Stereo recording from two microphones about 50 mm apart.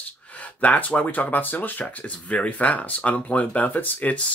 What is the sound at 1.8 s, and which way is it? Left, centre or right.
Speech, left.